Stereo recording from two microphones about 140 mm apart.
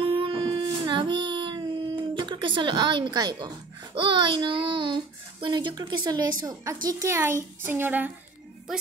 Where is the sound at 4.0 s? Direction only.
35° right (ahead or behind).